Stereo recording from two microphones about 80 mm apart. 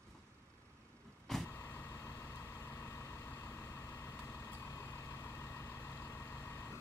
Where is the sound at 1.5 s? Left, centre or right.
Left.